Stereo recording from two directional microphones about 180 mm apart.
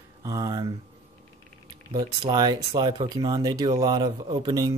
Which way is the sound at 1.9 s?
25° right (ahead or behind).